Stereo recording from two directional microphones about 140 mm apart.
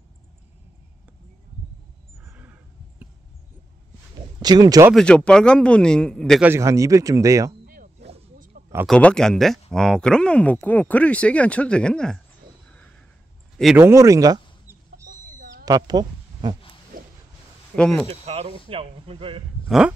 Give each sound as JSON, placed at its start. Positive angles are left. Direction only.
{"t": 2.2, "sound": "a sound", "side_deg": -15}
{"t": 4.4, "sound": "speech", "side_deg": -30}
{"t": 4.9, "sound": "speech", "side_deg": 5}
{"t": 6.4, "sound": "speech", "side_deg": -20}
{"t": 7.6, "sound": "a sound", "side_deg": -85}
{"t": 8.8, "sound": "speech", "side_deg": 5}
{"t": 13.7, "sound": "speech", "side_deg": -20}
{"t": 16.9, "sound": "a sound", "side_deg": -90}
{"t": 17.7, "sound": "speech", "side_deg": 5}
{"t": 18.0, "sound": "speech", "side_deg": -45}